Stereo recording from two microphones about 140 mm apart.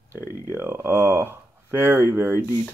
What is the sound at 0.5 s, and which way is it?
Speech, 15° right (ahead or behind).